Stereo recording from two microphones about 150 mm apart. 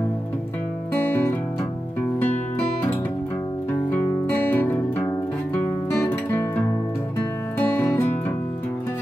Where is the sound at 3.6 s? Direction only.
15° left (ahead or behind).